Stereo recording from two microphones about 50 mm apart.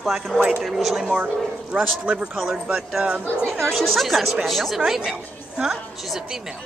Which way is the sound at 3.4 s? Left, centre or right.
Centre.